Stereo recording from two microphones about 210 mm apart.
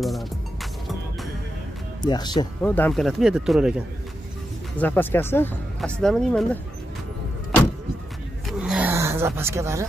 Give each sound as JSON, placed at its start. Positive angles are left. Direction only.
{"t": 2.0, "sound": "speech", "side_deg": 20}
{"t": 2.6, "sound": "speech", "side_deg": 10}
{"t": 4.7, "sound": "speech", "side_deg": 10}
{"t": 8.5, "sound": "a sound", "side_deg": -5}